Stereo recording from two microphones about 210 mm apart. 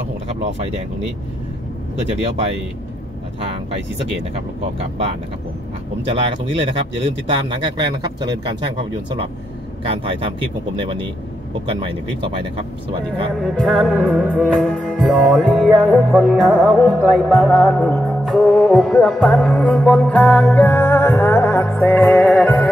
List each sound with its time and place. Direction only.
6.0 s speech: 25° right (ahead or behind)
9.8 s speech: 25° right (ahead or behind)
12.5 s speech: 25° right (ahead or behind)
13.4 s music: centre (ahead or behind)